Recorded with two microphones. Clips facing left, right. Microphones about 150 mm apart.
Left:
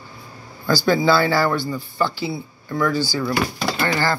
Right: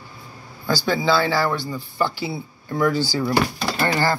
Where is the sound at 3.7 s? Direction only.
30° right (ahead or behind).